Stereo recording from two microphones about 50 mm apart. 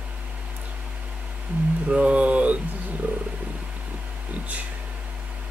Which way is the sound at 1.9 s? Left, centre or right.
Right.